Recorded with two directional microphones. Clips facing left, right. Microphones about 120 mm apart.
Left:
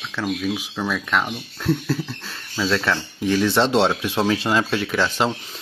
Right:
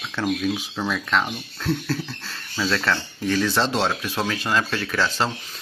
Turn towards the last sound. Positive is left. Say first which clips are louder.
# left 3 dB
turn(degrees=20)  # may be behind; listen again after turning